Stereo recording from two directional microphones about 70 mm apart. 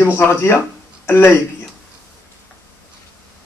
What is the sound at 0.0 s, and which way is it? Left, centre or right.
Speech, left.